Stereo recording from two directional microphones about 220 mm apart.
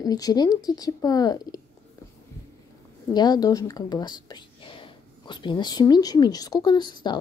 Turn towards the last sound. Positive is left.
turn(degrees=20)  # may be behind; listen again after turning